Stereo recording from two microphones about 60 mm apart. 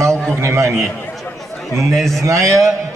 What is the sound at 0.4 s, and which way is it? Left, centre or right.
Speech, right.